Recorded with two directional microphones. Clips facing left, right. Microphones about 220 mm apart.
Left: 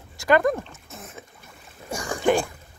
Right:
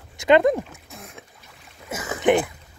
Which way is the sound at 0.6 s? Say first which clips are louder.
Right 4 dB; centre (ahead or behind).